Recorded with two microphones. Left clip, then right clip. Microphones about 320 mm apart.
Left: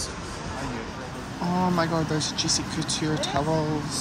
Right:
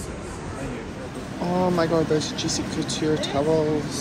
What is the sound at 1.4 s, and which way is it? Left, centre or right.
Speech, centre.